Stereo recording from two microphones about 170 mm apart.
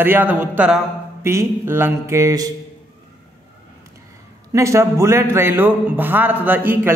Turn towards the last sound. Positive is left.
turn(degrees=-10)  # may be behind; listen again after turning